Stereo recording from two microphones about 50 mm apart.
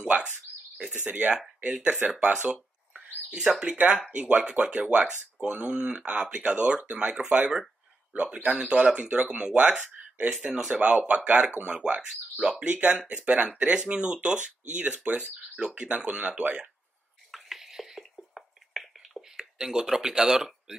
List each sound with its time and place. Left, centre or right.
0.0 s bird: centre
1.0 s speech: right
3.3 s speech: centre
3.6 s speech: right
8.9 s speech: right
17.3 s a sound: centre